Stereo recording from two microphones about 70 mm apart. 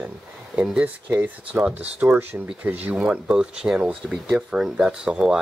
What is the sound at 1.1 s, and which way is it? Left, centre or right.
Speech, right.